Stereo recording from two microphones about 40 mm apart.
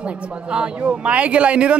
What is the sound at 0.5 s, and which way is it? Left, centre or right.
A man's voice, right.